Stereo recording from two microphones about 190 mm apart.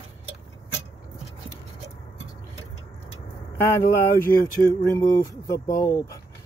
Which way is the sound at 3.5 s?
15° left (ahead or behind).